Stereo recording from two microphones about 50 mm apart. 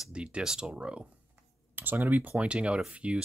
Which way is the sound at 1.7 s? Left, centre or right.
Right.